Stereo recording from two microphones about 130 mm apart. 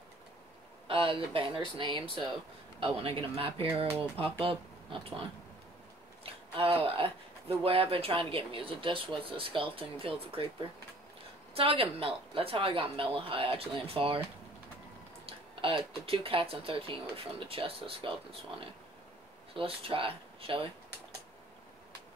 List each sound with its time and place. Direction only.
0.8 s speech: 45° right (ahead or behind)
6.2 s speech: 45° right (ahead or behind)
11.5 s speech: 45° right (ahead or behind)
15.2 s speech: 45° right (ahead or behind)
19.5 s speech: 45° right (ahead or behind)